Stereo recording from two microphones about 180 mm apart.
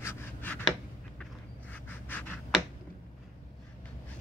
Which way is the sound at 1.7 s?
10° left (ahead or behind).